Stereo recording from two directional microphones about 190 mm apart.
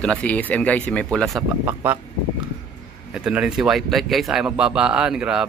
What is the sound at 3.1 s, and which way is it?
Speech, 5° right (ahead or behind).